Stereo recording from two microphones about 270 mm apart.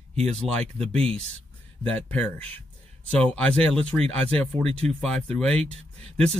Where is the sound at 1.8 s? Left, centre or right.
Centre.